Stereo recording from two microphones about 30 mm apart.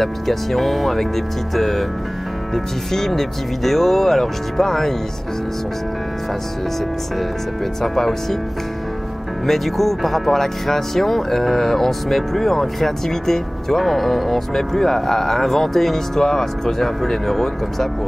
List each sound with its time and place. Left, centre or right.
0.0 s speech: centre
7.8 s speech: centre
9.5 s speech: centre